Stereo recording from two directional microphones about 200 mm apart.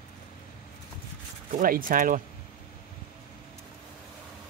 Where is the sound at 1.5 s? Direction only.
45° right (ahead or behind).